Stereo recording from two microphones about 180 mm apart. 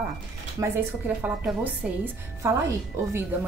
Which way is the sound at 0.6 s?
10° right (ahead or behind).